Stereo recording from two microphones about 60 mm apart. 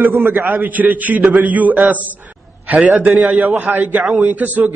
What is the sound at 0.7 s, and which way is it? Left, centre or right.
Speech, right.